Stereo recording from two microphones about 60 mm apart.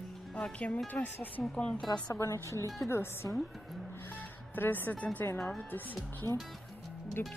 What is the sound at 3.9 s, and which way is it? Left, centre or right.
Music, left.